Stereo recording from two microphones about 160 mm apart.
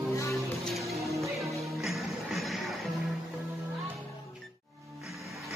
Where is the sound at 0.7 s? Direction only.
Centre (ahead or behind).